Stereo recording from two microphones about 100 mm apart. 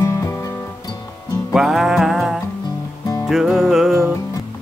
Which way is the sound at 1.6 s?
5° right (ahead or behind).